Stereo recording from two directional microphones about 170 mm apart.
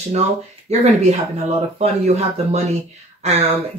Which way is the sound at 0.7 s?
40° right (ahead or behind).